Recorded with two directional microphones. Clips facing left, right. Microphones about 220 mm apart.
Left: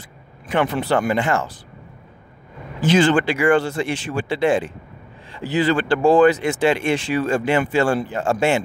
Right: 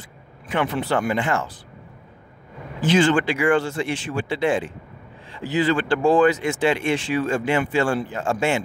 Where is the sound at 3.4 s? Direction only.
65° left (ahead or behind).